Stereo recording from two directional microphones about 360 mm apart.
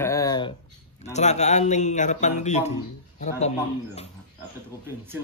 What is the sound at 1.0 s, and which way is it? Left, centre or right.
A man's voice, centre.